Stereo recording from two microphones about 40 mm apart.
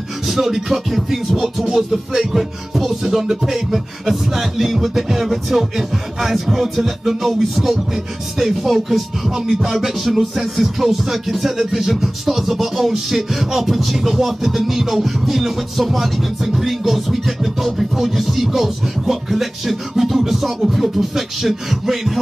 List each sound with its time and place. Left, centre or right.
0.3 s music: centre